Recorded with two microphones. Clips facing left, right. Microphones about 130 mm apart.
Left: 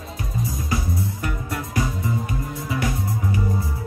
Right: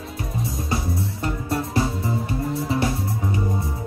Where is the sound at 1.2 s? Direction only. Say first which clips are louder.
Right 3 dB; 30° right (ahead or behind).